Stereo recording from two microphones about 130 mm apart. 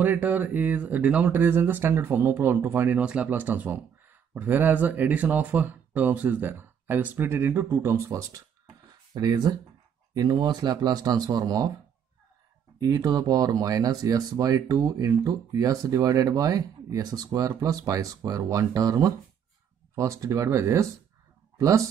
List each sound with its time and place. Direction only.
0.0 s speech: 15° right (ahead or behind); by 11.7 s 30° right (ahead or behind)
12.8 s speech: 25° right (ahead or behind)